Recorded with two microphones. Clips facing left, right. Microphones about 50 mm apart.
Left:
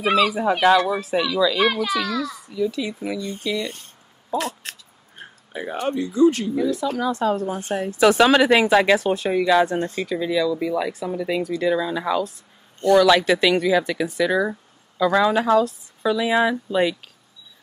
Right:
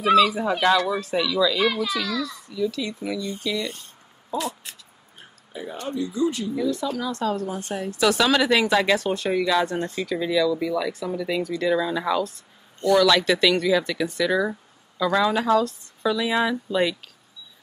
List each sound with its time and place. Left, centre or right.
0.0 s a child's voice: left
0.4 s speech: centre
1.6 s a child's voice: left
2.2 s speech: centre
4.4 s speech: left
7.0 s speech: centre
7.4 s speech: left; by 12.4 s centre
12.9 s speech: centre